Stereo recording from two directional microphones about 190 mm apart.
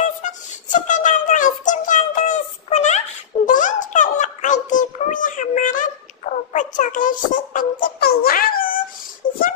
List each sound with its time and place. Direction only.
0.0 s music: 40° left (ahead or behind)
3.4 s a sound: 45° left (ahead or behind)
6.5 s music: 40° left (ahead or behind)